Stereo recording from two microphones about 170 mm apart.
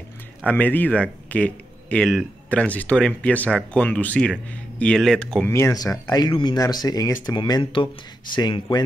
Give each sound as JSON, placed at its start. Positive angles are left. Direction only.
{"t": 0.5, "sound": "speech", "side_deg": 10}